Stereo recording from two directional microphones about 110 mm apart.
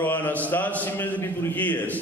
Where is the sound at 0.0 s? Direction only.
15° left (ahead or behind).